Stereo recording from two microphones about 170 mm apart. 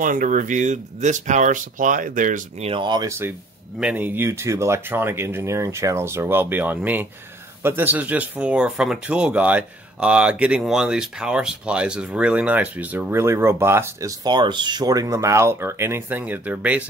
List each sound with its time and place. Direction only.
0.0 s speech: 50° right (ahead or behind)
2.7 s speech: 25° right (ahead or behind); by 16.8 s 10° right (ahead or behind)